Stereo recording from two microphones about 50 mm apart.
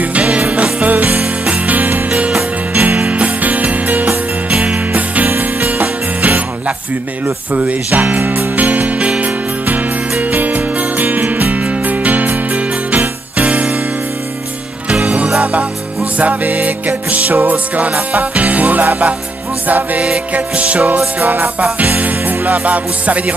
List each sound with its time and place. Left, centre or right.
0.0 s jingle bell: right
2.7 s music: right
4.5 s music: right
7.5 s music: right
10.3 s music: right
14.9 s music: right